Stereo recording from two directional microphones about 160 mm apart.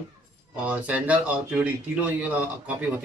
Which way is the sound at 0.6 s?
10° right (ahead or behind).